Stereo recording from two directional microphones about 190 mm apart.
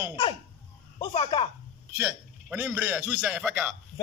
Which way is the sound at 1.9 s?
10° right (ahead or behind).